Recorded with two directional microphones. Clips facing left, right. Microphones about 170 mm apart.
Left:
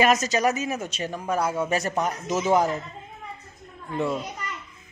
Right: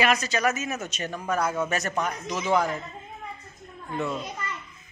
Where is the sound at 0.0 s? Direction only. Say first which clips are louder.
Left 3 dB; 40° left (ahead or behind).